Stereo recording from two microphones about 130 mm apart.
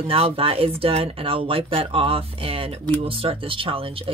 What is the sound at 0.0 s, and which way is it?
Speech, 50° right (ahead or behind).